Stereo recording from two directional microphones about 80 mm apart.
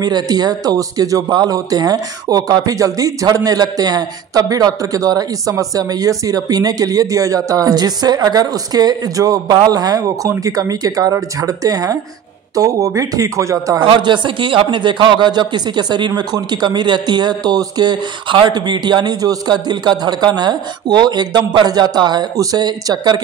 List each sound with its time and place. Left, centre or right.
0.0 s speech: right
13.8 s a man's voice: right
22.4 s a man's voice: right